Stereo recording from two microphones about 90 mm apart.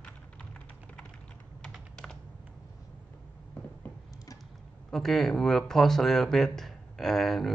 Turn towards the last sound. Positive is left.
turn(degrees=5)  # may be behind; listen again after turning